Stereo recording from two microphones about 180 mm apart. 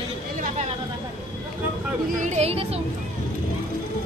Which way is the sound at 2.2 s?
35° right (ahead or behind).